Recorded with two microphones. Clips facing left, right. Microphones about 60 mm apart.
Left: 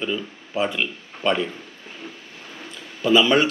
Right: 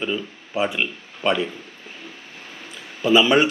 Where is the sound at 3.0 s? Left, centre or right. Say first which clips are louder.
Right 1 dB; centre.